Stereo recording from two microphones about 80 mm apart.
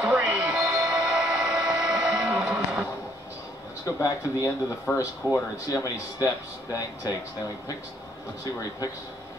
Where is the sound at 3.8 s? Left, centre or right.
Left.